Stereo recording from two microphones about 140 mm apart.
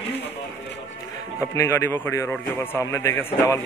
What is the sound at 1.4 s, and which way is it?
A man's voice, 20° left (ahead or behind).